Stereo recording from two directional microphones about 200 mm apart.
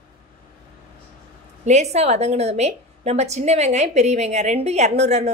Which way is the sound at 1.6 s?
35° right (ahead or behind).